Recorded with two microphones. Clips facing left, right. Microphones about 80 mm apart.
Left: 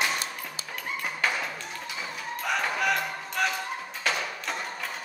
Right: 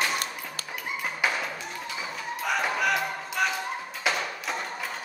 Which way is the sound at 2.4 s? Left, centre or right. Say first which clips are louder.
Right 1 dB; centre.